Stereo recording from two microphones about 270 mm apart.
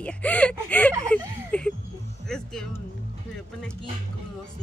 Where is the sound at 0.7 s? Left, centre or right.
Centre.